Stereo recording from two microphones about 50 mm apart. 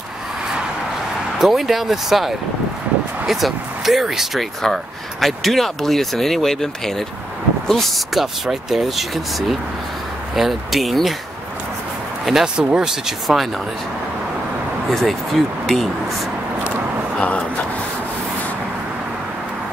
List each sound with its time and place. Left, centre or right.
1.4 s speech: centre
8.1 s speech: centre
12.3 s speech: centre
14.9 s speech: centre
17.2 s a sound: left